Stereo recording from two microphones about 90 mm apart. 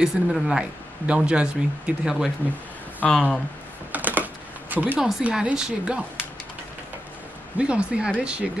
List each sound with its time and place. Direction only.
0.0 s speech: 5° right (ahead or behind)
3.0 s speech: 10° left (ahead or behind)
3.9 s typing: 20° right (ahead or behind)
5.0 s speech: 5° right (ahead or behind)
7.5 s speech: 15° right (ahead or behind)